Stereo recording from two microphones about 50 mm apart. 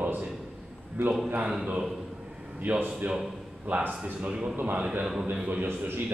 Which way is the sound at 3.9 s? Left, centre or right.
Right.